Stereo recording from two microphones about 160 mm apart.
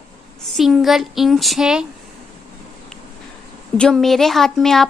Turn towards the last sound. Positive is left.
turn(degrees=0)  # may be behind; listen again after turning